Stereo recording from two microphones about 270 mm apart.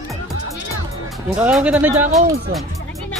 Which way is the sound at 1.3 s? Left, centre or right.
Centre.